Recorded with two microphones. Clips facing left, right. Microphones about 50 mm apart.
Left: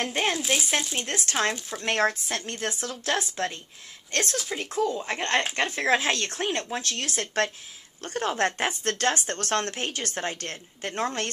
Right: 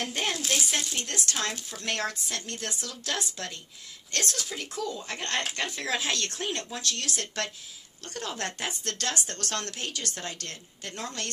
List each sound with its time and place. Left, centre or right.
0.1 s speech: left
0.4 s speech: centre
1.0 s speech: left